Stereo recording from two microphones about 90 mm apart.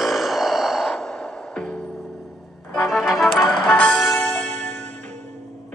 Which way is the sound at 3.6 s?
10° left (ahead or behind).